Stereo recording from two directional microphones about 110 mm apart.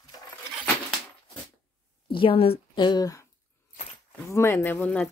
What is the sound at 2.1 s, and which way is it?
Speech, 55° left (ahead or behind).